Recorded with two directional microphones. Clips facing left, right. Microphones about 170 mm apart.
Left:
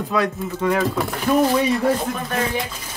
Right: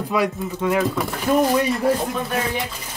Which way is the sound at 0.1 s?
10° right (ahead or behind).